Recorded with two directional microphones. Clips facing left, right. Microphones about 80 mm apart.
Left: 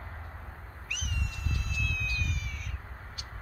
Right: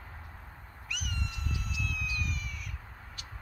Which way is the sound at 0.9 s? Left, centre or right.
Centre.